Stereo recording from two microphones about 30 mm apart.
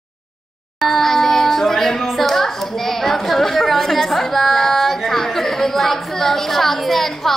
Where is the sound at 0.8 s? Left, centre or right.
Centre.